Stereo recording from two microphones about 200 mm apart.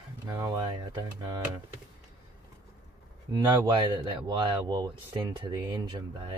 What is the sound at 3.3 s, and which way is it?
Speech, 20° right (ahead or behind).